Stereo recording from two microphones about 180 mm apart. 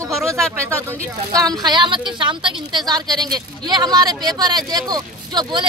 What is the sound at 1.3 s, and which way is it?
A woman's voice, 20° right (ahead or behind).